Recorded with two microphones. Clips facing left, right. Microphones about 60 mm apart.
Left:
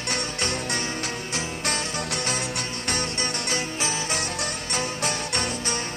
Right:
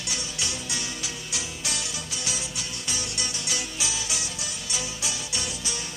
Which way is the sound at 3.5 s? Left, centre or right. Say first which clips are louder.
Left 4 dB; left.